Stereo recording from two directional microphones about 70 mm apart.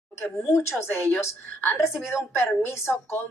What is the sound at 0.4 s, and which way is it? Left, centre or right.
A woman's voice, left.